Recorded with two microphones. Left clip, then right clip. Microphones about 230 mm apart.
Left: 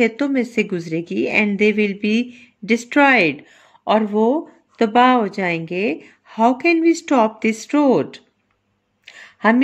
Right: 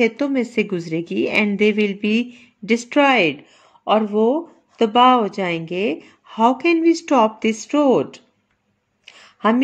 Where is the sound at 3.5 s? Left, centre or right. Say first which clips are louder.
Even; centre.